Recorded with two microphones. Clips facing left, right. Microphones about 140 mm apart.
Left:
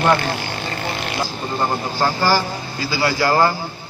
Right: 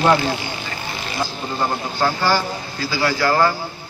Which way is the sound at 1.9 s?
10° left (ahead or behind).